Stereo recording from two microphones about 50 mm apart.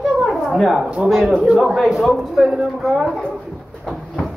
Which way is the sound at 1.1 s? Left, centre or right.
Centre.